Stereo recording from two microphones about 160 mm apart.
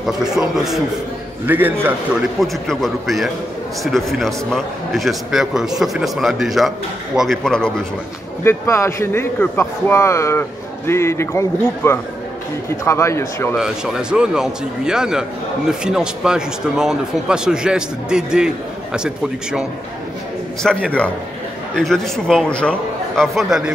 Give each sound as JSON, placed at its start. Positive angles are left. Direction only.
{"t": 0.0, "sound": "a man's voice", "side_deg": 0}
{"t": 1.4, "sound": "a man's voice", "side_deg": -15}
{"t": 2.4, "sound": "a man's voice", "side_deg": 0}
{"t": 8.5, "sound": "a man's voice", "side_deg": 15}
{"t": 13.6, "sound": "a man's voice", "side_deg": -5}
{"t": 20.6, "sound": "a man's voice", "side_deg": 5}